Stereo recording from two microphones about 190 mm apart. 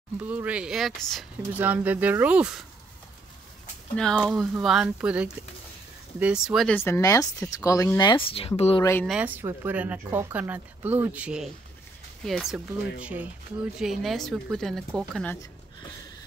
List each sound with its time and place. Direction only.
0.2 s speech: 10° right (ahead or behind)
3.9 s speech: 5° left (ahead or behind)
6.8 s speech: 15° left (ahead or behind); by 8.8 s 30° left (ahead or behind)
9.0 s speech: 5° right (ahead or behind)